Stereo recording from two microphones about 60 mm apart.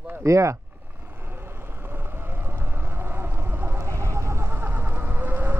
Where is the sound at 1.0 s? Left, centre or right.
Right.